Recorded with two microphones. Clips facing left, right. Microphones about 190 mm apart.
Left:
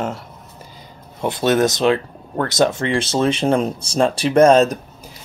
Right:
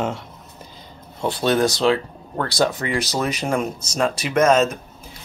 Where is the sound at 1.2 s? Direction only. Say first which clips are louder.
Left 2 dB; 20° left (ahead or behind).